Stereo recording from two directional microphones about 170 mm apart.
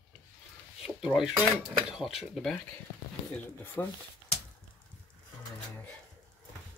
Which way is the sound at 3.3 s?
10° left (ahead or behind).